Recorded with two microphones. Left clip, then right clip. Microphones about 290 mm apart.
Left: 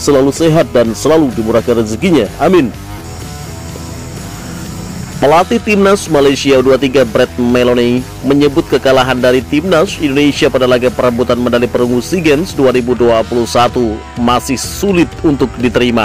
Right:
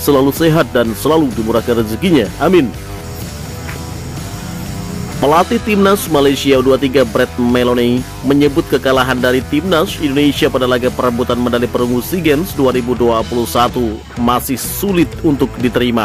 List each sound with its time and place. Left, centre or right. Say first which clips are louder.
0.0 s speech: left 2 dB; centre
5.2 s speech: left 3 dB; centre